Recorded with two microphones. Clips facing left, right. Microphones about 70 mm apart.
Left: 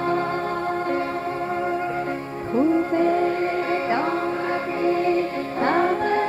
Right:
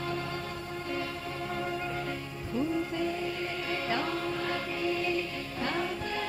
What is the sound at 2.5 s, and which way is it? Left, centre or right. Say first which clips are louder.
Music: left 11 dB; left.